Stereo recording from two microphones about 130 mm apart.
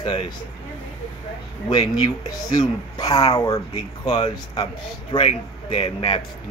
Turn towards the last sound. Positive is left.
turn(degrees=40)  # may be behind; listen again after turning